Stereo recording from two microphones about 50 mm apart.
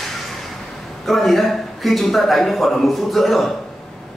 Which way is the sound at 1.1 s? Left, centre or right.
Centre.